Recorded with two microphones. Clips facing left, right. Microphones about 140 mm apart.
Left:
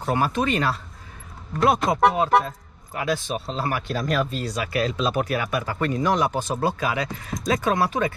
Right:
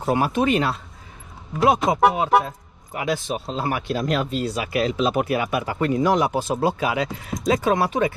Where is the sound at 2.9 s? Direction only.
20° right (ahead or behind).